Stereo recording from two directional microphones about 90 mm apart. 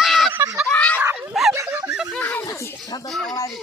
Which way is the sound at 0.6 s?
15° left (ahead or behind).